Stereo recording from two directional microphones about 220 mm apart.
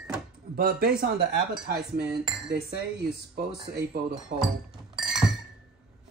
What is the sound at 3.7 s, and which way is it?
Speech, 45° right (ahead or behind).